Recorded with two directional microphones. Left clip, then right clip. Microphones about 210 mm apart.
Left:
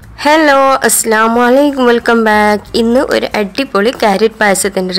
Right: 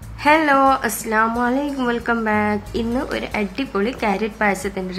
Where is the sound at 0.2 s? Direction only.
45° left (ahead or behind).